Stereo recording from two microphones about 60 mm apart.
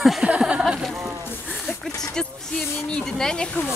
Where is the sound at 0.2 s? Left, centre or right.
Centre.